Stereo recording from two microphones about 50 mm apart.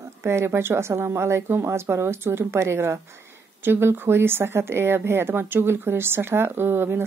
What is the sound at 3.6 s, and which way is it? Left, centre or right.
A woman's voice, right.